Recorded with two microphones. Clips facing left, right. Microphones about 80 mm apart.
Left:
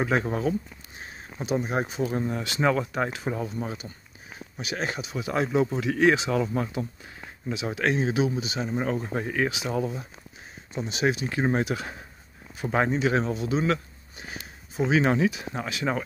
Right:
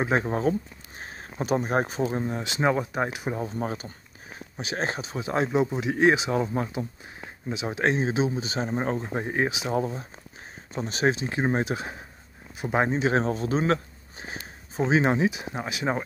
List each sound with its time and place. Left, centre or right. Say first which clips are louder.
0.0 s speech: right 1 dB; right
2.0 s speech: even; right
3.3 s speech: right 2 dB; right
8.9 s speech: even; right
9.8 s speech: right 1 dB; right
11.1 s speech: even; right